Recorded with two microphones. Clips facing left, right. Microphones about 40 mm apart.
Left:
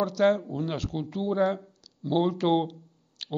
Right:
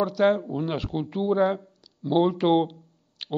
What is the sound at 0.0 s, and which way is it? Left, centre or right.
Speech, centre.